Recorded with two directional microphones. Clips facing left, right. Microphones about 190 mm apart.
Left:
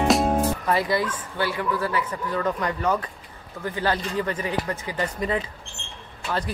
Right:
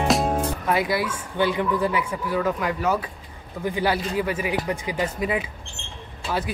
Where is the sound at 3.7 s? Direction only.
10° right (ahead or behind).